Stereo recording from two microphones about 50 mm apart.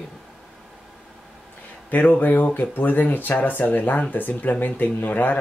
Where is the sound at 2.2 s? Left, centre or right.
Left.